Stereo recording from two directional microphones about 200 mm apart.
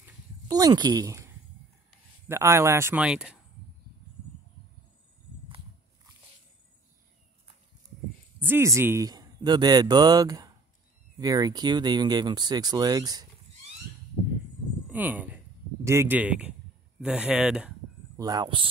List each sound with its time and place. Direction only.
0.0 s a sound: 20° right (ahead or behind)
1.9 s speech: 15° right (ahead or behind)
8.4 s speech: 10° right (ahead or behind)
14.9 s speech: 10° right (ahead or behind)
18.1 s speech: 20° right (ahead or behind)